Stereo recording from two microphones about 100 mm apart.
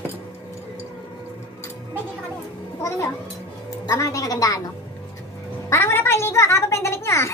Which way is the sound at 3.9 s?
35° left (ahead or behind).